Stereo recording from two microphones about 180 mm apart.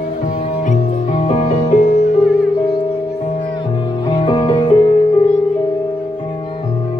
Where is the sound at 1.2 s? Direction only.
35° left (ahead or behind).